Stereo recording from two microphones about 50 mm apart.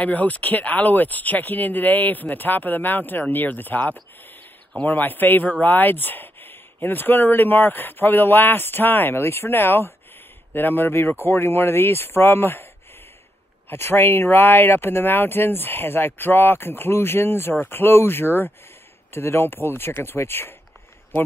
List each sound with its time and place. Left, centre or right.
0.0 s speech: left
13.7 s speech: left